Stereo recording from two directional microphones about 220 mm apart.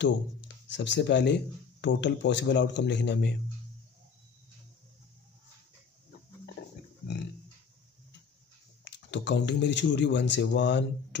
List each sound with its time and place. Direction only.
0.7 s speech: 55° left (ahead or behind)
8.8 s speech: 55° left (ahead or behind)